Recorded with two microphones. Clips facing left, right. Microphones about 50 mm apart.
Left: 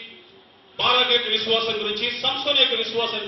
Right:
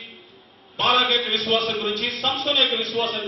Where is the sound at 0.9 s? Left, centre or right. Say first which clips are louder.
Even; centre.